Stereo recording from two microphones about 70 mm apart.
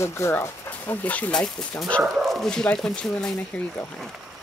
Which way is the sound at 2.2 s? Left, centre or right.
Centre.